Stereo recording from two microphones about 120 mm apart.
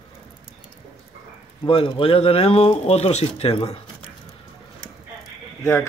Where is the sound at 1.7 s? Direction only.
50° left (ahead or behind).